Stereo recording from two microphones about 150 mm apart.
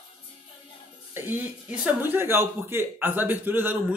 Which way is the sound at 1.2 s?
10° right (ahead or behind).